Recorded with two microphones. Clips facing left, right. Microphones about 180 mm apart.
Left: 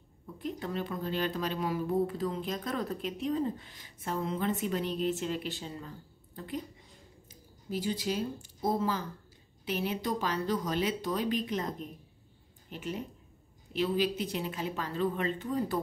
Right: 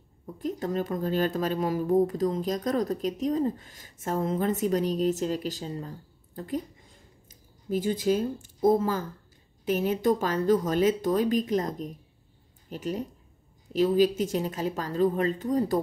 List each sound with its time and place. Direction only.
0.4 s a woman's voice: 40° right (ahead or behind)